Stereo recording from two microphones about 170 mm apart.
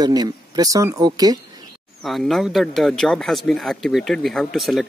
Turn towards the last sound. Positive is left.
turn(degrees=0)  # may be behind; listen again after turning